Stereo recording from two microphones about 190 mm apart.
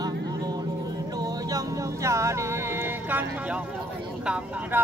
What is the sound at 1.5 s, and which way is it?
Music, 15° right (ahead or behind).